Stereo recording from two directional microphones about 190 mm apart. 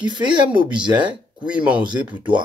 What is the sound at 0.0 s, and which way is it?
Speech, 25° right (ahead or behind).